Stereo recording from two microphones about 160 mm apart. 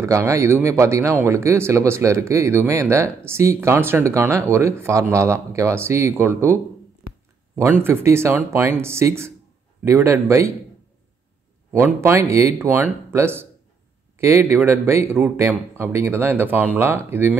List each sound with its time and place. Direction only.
0.0 s speech: 20° right (ahead or behind)
7.8 s speech: 15° right (ahead or behind)
11.7 s speech: 15° right (ahead or behind)